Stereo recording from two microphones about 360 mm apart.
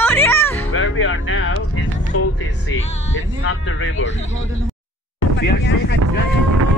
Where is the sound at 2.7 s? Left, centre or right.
Left.